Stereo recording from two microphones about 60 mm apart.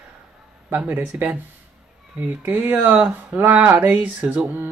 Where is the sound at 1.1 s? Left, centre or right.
Right.